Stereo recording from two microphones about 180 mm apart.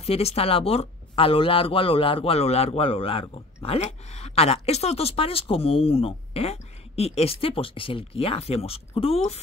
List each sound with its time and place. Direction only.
0.0 s speech: 35° left (ahead or behind)